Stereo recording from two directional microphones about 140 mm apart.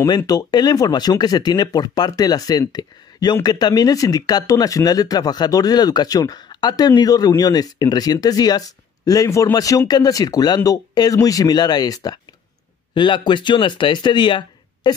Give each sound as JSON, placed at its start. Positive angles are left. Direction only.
{"t": 0.3, "sound": "speech", "side_deg": 30}